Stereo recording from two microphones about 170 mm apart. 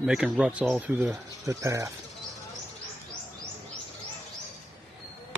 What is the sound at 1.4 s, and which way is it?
Speech, 20° right (ahead or behind).